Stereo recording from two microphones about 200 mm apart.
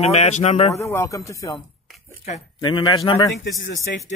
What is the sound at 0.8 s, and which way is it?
Speech, 15° left (ahead or behind).